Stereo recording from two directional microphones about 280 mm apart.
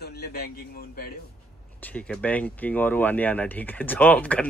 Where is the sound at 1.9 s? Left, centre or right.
Centre.